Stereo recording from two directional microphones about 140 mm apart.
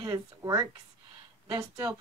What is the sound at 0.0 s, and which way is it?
Speech, 25° right (ahead or behind).